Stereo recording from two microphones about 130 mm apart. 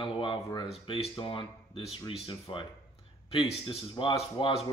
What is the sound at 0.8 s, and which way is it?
Speech, 50° left (ahead or behind).